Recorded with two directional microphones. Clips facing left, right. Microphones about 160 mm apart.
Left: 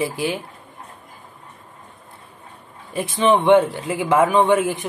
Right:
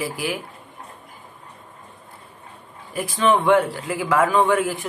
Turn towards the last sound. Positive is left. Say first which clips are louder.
# left 2 dB
turn(degrees=20)  # may be behind; listen again after turning